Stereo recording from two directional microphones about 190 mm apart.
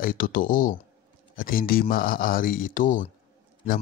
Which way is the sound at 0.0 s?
50° left (ahead or behind).